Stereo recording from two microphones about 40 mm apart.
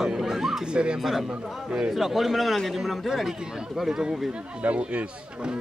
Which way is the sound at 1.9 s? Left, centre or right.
Centre.